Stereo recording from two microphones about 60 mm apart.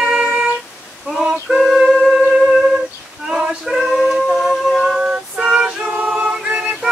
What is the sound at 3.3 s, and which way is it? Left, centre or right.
Female singing, centre.